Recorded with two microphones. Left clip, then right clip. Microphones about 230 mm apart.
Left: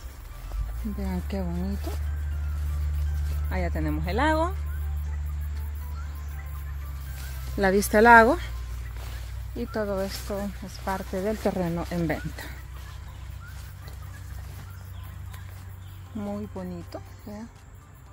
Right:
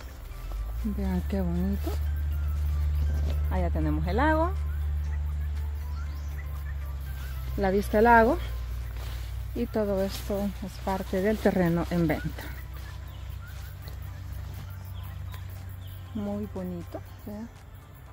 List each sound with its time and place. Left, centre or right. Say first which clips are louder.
0.9 s speech: right 1 dB; centre
3.4 s speech: left 1 dB; centre
7.5 s speech: left 4 dB; left
9.6 s speech: right 1 dB; centre
16.2 s speech: even; centre